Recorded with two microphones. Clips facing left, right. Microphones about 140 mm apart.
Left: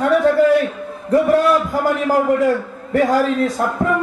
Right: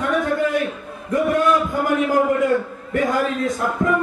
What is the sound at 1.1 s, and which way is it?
Speech, 35° left (ahead or behind).